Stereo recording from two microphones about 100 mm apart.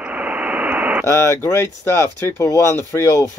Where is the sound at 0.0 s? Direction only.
15° right (ahead or behind).